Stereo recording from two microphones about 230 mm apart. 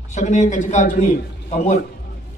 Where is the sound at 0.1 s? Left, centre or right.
Left.